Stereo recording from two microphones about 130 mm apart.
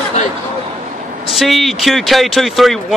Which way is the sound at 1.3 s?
Centre (ahead or behind).